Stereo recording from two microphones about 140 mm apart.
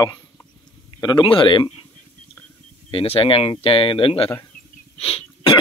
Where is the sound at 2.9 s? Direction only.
40° left (ahead or behind).